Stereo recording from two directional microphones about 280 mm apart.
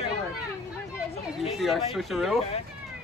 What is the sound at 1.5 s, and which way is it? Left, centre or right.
Speech, centre.